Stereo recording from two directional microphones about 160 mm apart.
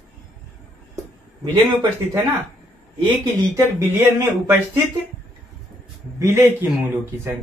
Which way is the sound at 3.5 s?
15° right (ahead or behind).